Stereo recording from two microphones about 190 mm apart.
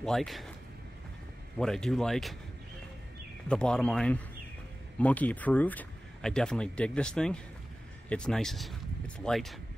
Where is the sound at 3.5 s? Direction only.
5° left (ahead or behind).